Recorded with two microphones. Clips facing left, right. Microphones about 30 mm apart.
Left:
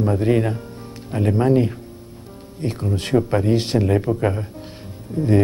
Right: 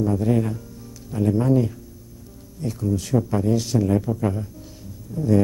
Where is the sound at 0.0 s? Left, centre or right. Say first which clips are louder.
Left 3 dB; left.